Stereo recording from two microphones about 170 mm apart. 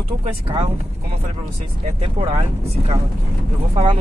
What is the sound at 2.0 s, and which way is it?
Speech, 35° right (ahead or behind).